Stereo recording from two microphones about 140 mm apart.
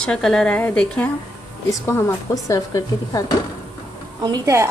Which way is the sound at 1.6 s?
20° left (ahead or behind).